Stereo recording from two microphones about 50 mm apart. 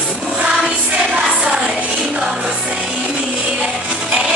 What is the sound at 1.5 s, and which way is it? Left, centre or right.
Music, centre.